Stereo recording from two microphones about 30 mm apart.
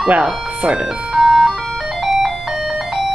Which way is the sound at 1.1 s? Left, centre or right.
Centre.